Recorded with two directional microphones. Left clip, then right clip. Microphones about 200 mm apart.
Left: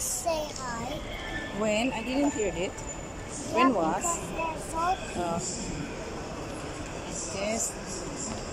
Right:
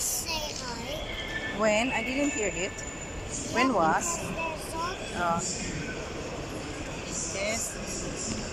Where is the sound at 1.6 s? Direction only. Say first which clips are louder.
Right 3 dB; 15° left (ahead or behind).